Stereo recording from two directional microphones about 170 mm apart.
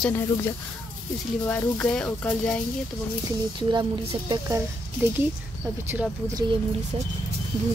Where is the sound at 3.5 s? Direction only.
25° right (ahead or behind).